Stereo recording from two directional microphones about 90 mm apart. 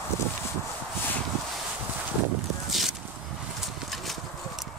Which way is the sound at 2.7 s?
Centre (ahead or behind).